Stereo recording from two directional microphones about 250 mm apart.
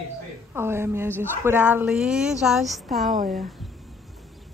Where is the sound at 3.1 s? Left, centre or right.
Right.